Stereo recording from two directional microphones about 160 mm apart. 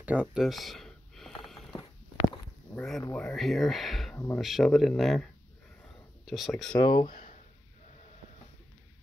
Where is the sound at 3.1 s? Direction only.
5° left (ahead or behind).